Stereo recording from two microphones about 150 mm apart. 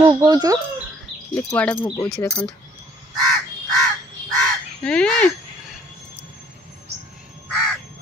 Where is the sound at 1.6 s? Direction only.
10° left (ahead or behind).